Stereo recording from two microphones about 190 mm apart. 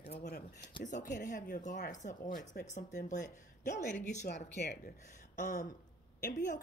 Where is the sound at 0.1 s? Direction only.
60° left (ahead or behind).